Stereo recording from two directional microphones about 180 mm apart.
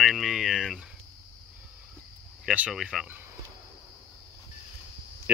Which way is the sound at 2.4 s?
5° right (ahead or behind).